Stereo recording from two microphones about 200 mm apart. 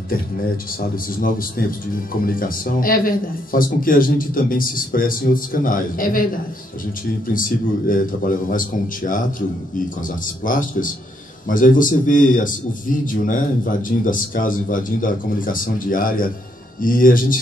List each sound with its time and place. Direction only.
0.7 s a man's voice: 45° left (ahead or behind)
7.2 s a man's voice: 45° left (ahead or behind)